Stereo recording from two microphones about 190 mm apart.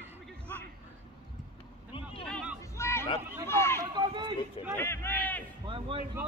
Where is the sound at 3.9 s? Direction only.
25° right (ahead or behind).